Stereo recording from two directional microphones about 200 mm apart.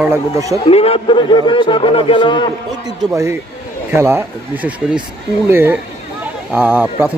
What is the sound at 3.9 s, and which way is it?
Speech, 10° right (ahead or behind).